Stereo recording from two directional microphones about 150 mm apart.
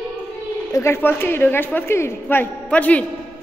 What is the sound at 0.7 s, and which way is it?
A woman's voice, 15° left (ahead or behind).